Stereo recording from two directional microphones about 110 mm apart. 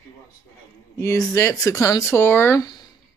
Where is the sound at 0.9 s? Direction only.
25° left (ahead or behind).